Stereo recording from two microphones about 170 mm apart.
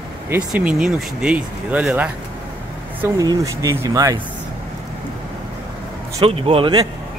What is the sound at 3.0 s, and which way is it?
Speech, 20° right (ahead or behind).